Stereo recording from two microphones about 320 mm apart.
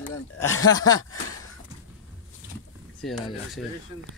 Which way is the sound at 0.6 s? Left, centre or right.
Centre.